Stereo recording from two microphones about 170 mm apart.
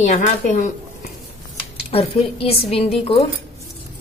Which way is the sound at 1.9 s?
35° left (ahead or behind).